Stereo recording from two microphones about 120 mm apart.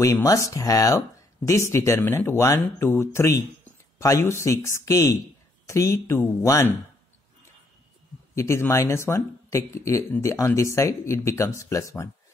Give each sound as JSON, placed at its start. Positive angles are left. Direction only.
{"t": 0.0, "sound": "speech", "side_deg": 30}
{"t": 8.4, "sound": "speech", "side_deg": 20}